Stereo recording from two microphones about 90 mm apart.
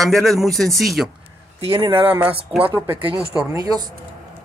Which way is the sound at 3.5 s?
45° right (ahead or behind).